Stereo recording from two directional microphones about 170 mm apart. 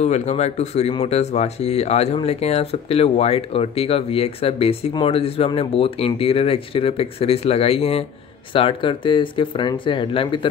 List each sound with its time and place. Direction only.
0.0 s speech: 40° left (ahead or behind)